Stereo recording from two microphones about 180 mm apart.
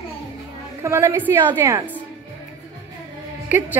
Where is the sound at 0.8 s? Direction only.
15° right (ahead or behind).